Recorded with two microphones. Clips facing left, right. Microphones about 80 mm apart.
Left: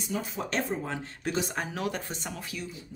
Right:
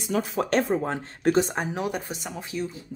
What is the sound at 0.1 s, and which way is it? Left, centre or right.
Speech, right.